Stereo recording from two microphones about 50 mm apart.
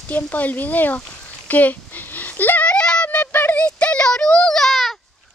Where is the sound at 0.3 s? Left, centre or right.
Left.